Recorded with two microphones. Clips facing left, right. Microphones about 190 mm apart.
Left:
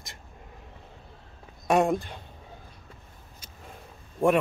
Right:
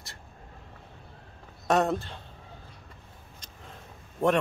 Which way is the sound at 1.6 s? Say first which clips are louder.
Left 2 dB; 10° left (ahead or behind).